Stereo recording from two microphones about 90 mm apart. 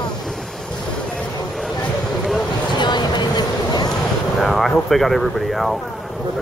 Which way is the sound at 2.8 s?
55° left (ahead or behind).